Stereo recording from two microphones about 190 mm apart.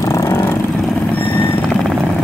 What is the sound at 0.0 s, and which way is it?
Vehicle, 20° left (ahead or behind).